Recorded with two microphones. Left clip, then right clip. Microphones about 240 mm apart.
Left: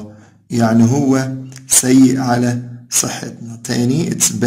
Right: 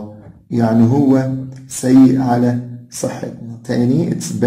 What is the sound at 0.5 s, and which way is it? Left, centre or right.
Speech, left.